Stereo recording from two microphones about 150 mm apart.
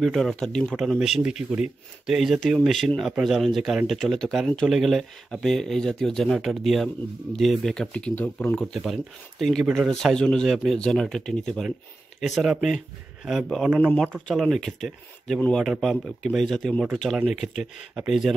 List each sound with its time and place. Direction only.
0.0 s speech: centre (ahead or behind)
14.1 s speech: 5° left (ahead or behind)